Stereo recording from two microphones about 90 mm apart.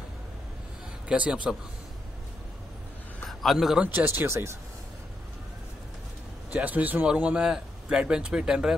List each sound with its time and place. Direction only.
1.0 s speech: 15° right (ahead or behind)
3.3 s a man's voice: centre (ahead or behind)
3.9 s speech: 25° right (ahead or behind)
6.5 s speech: 20° right (ahead or behind)